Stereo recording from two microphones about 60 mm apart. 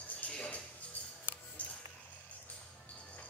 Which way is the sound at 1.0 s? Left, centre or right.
Left.